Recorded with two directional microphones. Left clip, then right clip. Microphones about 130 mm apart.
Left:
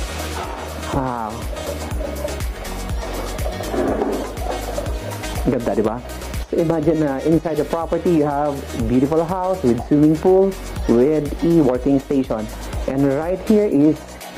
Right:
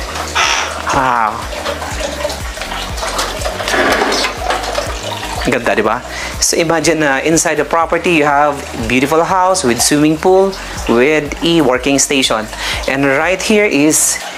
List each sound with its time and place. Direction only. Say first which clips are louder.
0.4 s crow: right 14 dB; 30° left (ahead or behind)
3.7 s a sound: right 9 dB; 30° left (ahead or behind)
5.5 s speech: right 7 dB; 35° left (ahead or behind)
11.0 s speech: right 6 dB; 35° left (ahead or behind)
12.3 s speech: right 10 dB; 30° left (ahead or behind)